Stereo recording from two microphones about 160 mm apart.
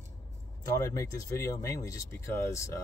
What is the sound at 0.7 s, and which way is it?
Speech, 20° left (ahead or behind).